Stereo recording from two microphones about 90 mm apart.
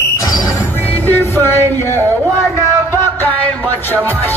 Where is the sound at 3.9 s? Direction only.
25° left (ahead or behind).